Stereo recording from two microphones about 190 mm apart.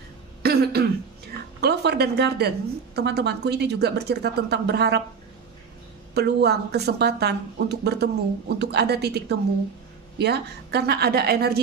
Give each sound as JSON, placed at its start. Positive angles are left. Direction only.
{"t": 0.4, "sound": "throat clearing", "side_deg": -55}
{"t": 1.6, "sound": "a woman's voice", "side_deg": -60}
{"t": 6.1, "sound": "a woman's voice", "side_deg": -60}